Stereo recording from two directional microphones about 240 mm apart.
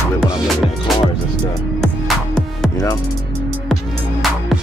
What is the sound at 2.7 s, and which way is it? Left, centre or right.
Music, centre.